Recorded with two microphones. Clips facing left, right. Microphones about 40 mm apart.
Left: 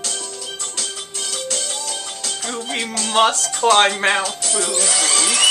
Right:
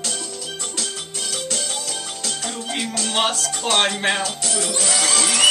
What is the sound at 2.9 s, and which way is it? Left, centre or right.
Speech, centre.